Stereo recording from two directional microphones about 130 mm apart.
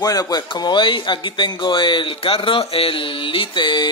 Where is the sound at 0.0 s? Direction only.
30° left (ahead or behind).